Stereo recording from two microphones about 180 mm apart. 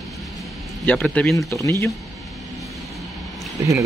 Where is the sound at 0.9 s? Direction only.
5° left (ahead or behind).